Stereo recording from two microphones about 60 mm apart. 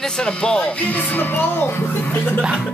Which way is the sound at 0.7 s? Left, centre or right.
Left.